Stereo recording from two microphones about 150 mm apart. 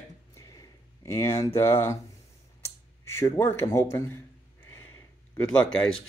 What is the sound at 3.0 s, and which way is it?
A man's voice, 20° left (ahead or behind).